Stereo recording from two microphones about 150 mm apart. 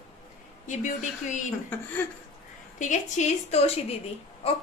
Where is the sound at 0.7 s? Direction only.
55° left (ahead or behind).